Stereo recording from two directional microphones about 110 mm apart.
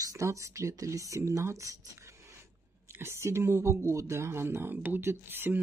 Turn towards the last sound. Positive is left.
turn(degrees=-20)  # may be behind; listen again after turning